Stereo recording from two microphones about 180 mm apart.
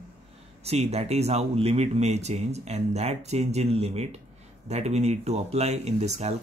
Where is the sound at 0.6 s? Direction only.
35° right (ahead or behind).